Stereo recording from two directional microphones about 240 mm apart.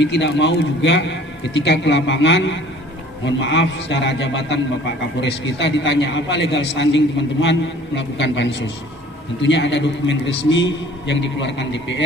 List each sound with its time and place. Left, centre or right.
0.0 s a man's voice: left